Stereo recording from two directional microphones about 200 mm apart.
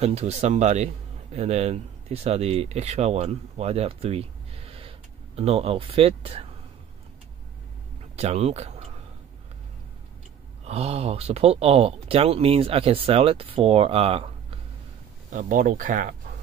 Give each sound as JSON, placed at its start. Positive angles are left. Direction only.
{"t": 0.0, "sound": "speech", "side_deg": -30}
{"t": 8.2, "sound": "speech", "side_deg": -30}
{"t": 10.6, "sound": "speech", "side_deg": -30}
{"t": 15.3, "sound": "speech", "side_deg": -40}